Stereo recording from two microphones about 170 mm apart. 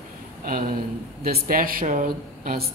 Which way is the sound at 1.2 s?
60° right (ahead or behind).